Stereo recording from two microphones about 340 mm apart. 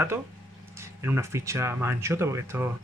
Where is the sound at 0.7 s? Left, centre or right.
Centre.